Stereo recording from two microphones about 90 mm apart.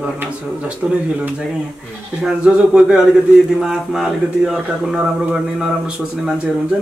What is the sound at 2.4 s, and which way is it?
Speech, 15° right (ahead or behind).